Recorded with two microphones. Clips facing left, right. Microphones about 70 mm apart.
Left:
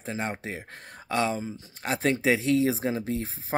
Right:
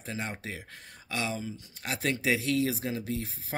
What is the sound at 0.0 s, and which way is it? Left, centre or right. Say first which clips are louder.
Speech: left 5 dB; left.